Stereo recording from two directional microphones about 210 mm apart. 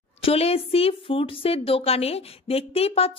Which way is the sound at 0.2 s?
30° left (ahead or behind).